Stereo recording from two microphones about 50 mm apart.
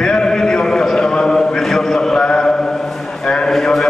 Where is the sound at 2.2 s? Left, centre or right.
Centre.